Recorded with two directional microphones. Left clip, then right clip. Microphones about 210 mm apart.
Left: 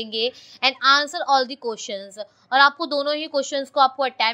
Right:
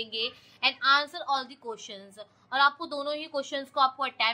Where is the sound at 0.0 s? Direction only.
30° left (ahead or behind).